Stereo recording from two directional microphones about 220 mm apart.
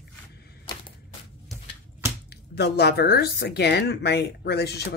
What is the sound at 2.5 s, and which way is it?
Speech, 45° left (ahead or behind).